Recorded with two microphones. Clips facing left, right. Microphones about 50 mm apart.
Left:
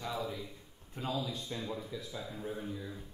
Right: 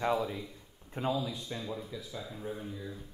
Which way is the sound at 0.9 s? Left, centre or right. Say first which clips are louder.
Right 6 dB; right.